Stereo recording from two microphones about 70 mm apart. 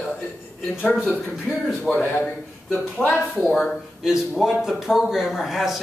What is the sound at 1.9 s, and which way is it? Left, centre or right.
A man's voice, centre.